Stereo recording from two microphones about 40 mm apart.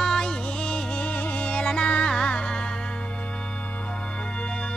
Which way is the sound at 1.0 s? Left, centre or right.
Left.